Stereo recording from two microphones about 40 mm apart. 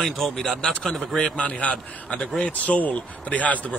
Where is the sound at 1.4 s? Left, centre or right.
Left.